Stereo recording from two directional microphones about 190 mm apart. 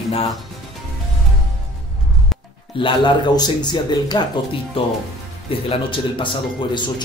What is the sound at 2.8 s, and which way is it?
Speech, 25° left (ahead or behind).